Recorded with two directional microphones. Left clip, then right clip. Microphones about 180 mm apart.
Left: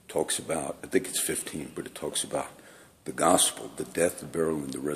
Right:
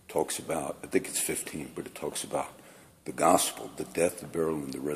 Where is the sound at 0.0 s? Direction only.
5° left (ahead or behind).